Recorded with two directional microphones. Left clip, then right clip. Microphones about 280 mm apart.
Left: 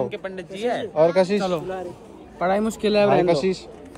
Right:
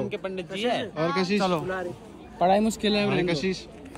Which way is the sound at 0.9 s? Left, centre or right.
Centre.